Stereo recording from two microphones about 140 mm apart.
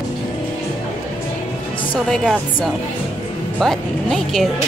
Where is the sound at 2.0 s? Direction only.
5° left (ahead or behind).